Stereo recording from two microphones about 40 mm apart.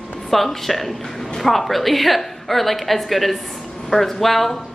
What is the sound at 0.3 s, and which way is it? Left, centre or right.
A woman's voice, centre.